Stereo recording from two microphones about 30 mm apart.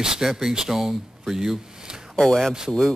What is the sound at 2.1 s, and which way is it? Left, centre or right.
Speech, centre.